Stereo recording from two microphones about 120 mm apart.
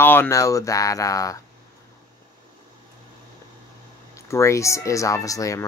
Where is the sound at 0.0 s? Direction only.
15° left (ahead or behind).